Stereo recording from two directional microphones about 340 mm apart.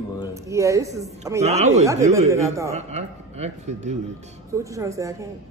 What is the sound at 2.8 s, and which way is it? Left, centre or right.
A man's voice, centre.